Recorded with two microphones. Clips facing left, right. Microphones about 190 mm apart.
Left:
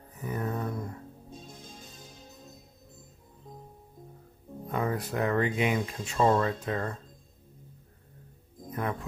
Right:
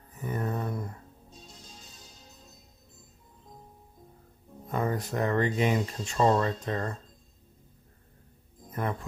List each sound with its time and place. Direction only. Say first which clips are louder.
0.2 s a sound: even; centre (ahead or behind)
1.3 s music: left 3 dB; 50° left (ahead or behind)
4.6 s speech: right 1 dB; centre (ahead or behind)
8.6 s music: even; centre (ahead or behind)